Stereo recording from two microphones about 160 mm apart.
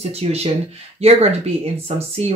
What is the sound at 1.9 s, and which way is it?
Speech, 40° right (ahead or behind).